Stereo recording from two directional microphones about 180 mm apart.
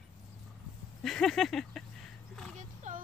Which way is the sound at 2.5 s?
45° right (ahead or behind).